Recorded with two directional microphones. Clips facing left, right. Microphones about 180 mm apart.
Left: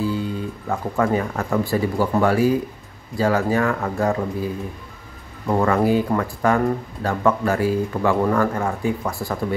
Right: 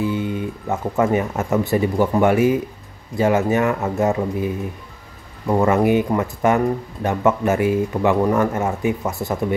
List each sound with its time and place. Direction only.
0.0 s speech: 20° right (ahead or behind)
5.7 s speech: 20° right (ahead or behind)